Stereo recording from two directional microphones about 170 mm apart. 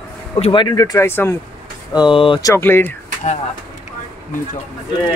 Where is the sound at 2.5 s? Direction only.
15° left (ahead or behind).